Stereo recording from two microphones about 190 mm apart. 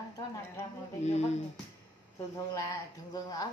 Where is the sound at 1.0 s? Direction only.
35° left (ahead or behind).